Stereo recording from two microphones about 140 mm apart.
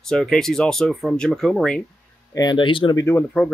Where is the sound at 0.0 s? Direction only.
5° left (ahead or behind).